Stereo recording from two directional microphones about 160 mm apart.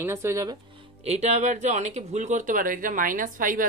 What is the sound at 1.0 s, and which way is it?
Speech, 45° right (ahead or behind).